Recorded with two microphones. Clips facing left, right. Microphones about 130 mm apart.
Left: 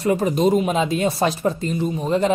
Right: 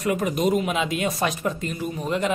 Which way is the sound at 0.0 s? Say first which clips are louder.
Left 4 dB; 30° left (ahead or behind).